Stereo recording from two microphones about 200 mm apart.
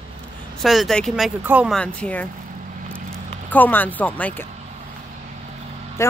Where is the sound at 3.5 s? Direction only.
10° left (ahead or behind).